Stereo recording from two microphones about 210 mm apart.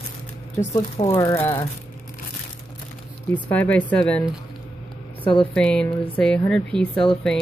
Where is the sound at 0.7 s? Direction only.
25° left (ahead or behind).